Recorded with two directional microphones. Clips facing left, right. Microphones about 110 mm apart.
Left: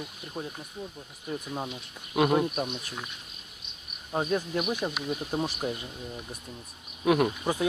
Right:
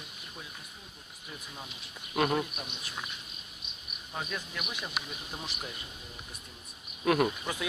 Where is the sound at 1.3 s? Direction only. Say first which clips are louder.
Left 12 dB; 45° left (ahead or behind).